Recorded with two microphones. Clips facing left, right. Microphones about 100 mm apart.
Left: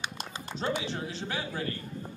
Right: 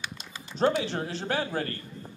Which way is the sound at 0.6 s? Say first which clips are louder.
Right 7 dB; 50° right (ahead or behind).